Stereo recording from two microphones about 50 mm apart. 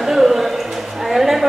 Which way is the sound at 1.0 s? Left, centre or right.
Centre.